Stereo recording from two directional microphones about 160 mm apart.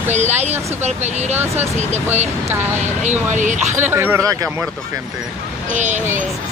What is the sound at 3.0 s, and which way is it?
Speech, 50° right (ahead or behind).